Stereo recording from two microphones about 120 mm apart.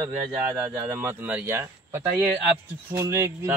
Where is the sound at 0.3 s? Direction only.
15° right (ahead or behind).